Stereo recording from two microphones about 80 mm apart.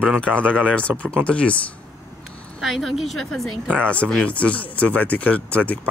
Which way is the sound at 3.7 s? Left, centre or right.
Centre.